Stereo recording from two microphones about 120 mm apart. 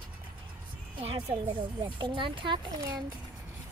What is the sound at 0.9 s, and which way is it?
A woman's voice, 50° right (ahead or behind).